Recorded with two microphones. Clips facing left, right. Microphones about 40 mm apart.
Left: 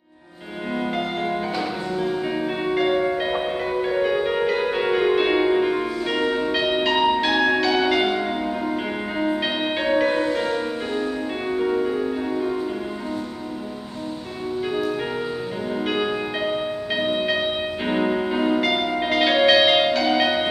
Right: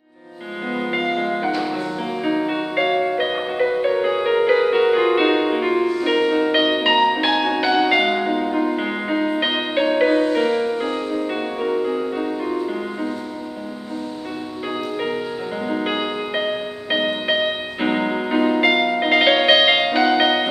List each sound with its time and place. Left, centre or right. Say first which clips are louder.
0.7 s music: right 3 dB; centre
1.2 s music: right 3 dB; centre
6.2 s music: right 4 dB; centre
6.5 s music: right 4 dB; centre
7.3 s change ringing: right 1 dB; centre
8.5 s music: right 4 dB; centre
15.7 s music: even; centre